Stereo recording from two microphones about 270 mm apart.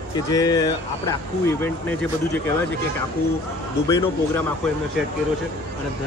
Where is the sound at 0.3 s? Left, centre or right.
Centre.